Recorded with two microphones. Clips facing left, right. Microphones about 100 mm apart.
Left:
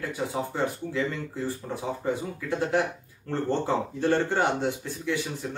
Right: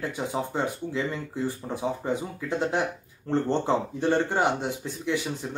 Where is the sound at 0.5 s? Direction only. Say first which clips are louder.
Even; 20° right (ahead or behind).